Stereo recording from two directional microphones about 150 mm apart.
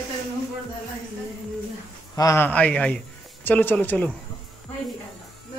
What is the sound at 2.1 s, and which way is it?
A man's voice, 20° left (ahead or behind).